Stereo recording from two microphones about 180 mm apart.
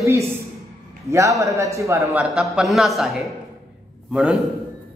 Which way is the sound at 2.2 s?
5° right (ahead or behind).